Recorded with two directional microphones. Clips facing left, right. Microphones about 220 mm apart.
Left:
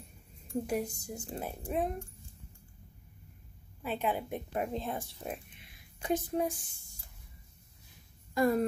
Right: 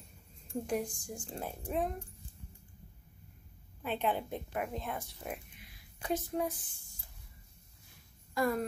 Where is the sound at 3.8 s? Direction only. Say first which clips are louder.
Even; 10° left (ahead or behind).